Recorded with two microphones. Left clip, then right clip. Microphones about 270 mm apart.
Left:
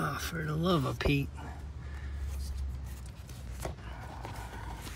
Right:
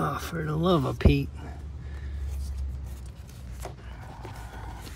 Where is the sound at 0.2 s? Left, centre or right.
Centre.